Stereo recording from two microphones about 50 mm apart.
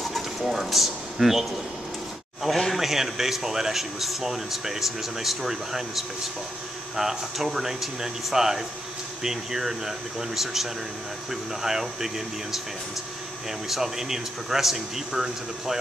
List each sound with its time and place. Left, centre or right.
0.4 s speech: centre
13.7 s speech: centre